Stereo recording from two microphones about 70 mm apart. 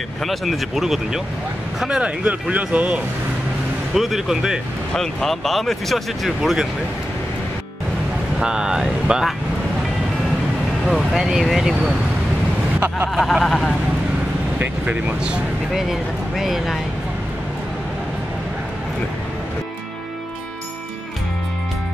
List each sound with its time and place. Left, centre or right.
0.2 s speech: centre
3.9 s speech: centre
4.9 s speech: centre
8.4 s speech: centre
10.9 s speech: centre
13.1 s speech: centre
14.6 s speech: right
15.7 s speech: centre